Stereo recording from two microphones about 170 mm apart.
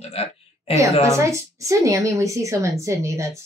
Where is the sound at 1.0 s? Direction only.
15° right (ahead or behind).